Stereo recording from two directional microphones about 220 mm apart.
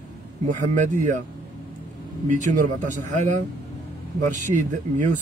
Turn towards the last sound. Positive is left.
turn(degrees=-35)  # may be behind; listen again after turning